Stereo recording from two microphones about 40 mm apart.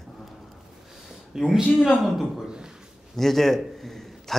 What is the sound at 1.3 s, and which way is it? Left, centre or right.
A man's voice, centre.